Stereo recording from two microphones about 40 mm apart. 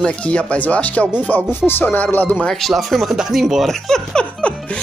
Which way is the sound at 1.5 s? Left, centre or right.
Left.